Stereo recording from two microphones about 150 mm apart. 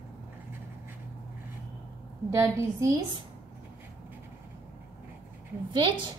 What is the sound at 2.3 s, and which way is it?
Speech, 20° right (ahead or behind).